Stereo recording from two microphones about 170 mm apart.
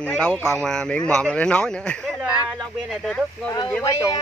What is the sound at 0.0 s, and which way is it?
Speech, 5° left (ahead or behind).